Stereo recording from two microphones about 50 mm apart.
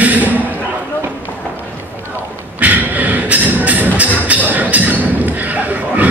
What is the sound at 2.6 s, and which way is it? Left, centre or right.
Music, right.